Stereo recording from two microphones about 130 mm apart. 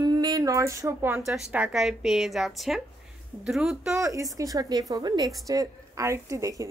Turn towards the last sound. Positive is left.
turn(degrees=-25)  # may be behind; listen again after turning